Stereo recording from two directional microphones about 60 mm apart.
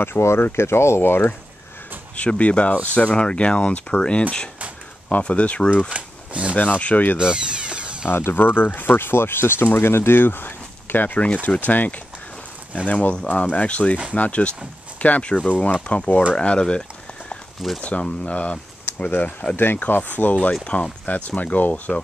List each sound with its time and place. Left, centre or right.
0.0 s speech: left
2.1 s speech: left
5.9 s shuffling cards: centre
6.5 s speech: left
7.2 s a sound: centre
8.1 s speech: left; by 16.8 s centre
17.8 s speech: left
19.0 s speech: left